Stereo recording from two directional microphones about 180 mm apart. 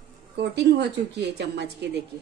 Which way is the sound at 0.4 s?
70° right (ahead or behind).